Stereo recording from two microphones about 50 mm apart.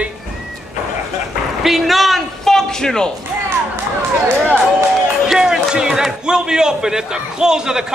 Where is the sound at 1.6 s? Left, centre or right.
Centre.